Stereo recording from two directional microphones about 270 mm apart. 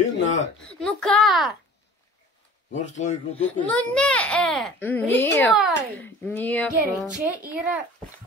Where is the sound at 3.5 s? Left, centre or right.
Centre.